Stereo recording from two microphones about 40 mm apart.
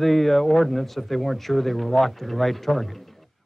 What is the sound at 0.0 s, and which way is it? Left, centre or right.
Speech, centre.